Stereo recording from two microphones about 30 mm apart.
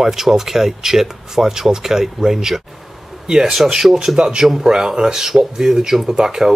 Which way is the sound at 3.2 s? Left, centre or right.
Right.